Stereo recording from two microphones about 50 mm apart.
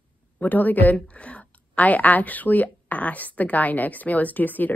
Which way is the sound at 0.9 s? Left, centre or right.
Left.